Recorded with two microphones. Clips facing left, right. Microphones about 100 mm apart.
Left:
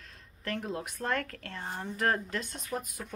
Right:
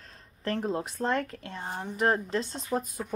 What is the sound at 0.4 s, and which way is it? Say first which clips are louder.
A woman's voice: right 5 dB; 30° right (ahead or behind).